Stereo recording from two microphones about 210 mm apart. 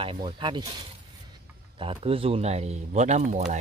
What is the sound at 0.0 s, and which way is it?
Speech, 25° right (ahead or behind).